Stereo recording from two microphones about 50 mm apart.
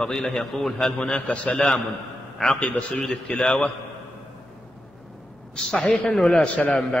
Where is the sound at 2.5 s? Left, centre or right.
Left.